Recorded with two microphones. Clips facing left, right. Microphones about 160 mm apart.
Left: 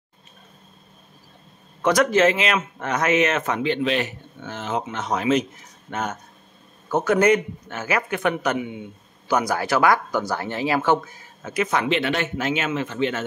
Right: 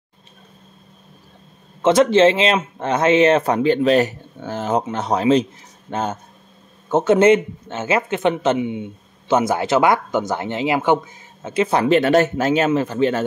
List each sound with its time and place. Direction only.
1.8 s a man's voice: 25° right (ahead or behind)